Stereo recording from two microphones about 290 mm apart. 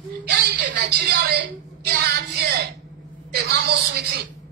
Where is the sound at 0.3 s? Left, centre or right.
Right.